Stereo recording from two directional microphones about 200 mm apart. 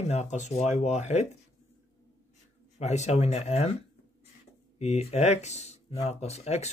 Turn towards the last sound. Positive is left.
turn(degrees=30)  # may be behind; listen again after turning